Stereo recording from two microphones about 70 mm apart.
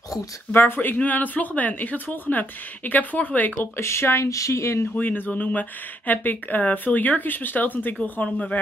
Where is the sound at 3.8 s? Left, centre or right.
Left.